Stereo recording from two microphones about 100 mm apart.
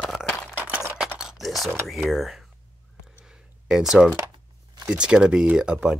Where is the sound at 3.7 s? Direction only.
5° right (ahead or behind).